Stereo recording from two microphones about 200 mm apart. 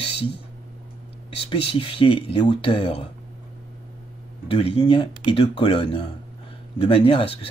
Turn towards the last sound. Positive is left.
turn(degrees=30)  # may be behind; listen again after turning